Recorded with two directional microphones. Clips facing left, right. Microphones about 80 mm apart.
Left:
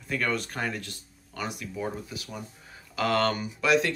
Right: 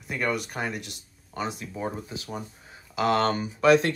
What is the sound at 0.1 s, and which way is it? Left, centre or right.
Speech, centre.